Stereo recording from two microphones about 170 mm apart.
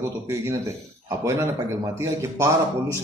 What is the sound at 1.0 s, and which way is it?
A man's voice, 15° right (ahead or behind).